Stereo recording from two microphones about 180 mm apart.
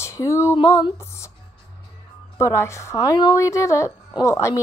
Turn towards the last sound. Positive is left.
turn(degrees=15)  # may be behind; listen again after turning